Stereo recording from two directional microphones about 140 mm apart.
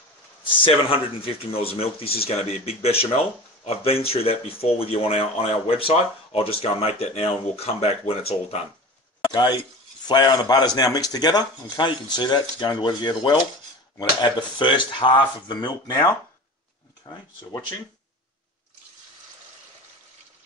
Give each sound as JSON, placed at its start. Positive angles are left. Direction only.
{"t": 0.4, "sound": "speech", "side_deg": 40}
{"t": 9.3, "sound": "speech", "side_deg": 30}